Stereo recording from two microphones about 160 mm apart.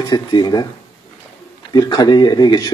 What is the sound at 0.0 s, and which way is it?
Speech, 25° left (ahead or behind).